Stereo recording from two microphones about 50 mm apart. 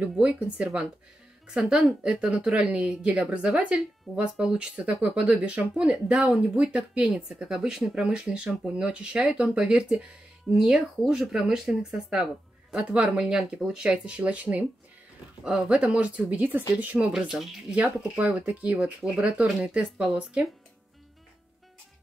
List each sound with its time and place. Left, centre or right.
0.0 s speech: right
1.7 s speech: centre
6.5 s speech: right
10.5 s speech: centre; by 14.7 s right
15.4 s speech: centre
17.3 s speech: centre
17.6 s speech: right
18.9 s speech: centre